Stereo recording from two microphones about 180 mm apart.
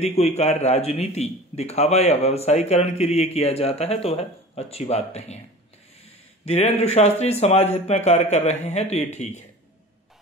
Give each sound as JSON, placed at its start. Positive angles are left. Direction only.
{"t": 0.0, "sound": "a man's voice", "side_deg": 35}
{"t": 6.4, "sound": "a man's voice", "side_deg": 35}